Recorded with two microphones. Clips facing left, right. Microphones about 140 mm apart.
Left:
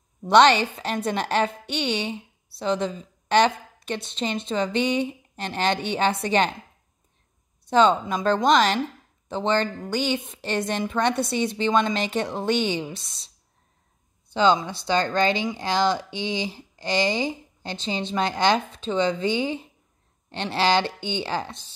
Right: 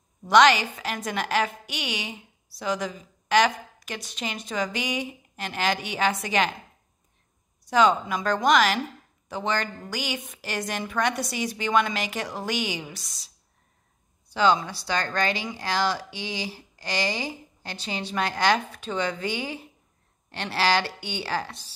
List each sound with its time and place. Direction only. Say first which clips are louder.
0.3 s a woman's voice: left 2 dB; 30° left (ahead or behind)
7.7 s a woman's voice: left 2 dB; 25° left (ahead or behind)
14.3 s a woman's voice: left 2 dB; 25° left (ahead or behind)